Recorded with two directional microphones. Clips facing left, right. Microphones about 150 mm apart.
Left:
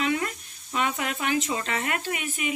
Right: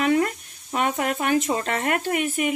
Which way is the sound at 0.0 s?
45° right (ahead or behind).